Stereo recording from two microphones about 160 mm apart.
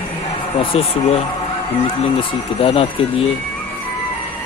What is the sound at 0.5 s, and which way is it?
Speech, 35° left (ahead or behind).